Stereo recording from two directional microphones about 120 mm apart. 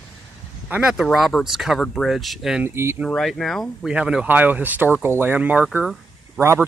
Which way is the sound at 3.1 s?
5° left (ahead or behind).